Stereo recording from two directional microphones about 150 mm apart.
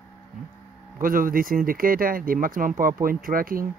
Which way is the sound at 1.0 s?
70° right (ahead or behind).